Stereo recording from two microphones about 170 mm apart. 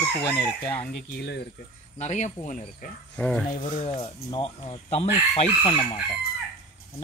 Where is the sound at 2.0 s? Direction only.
45° left (ahead or behind).